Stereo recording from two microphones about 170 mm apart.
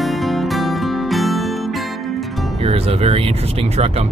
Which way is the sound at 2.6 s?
35° right (ahead or behind).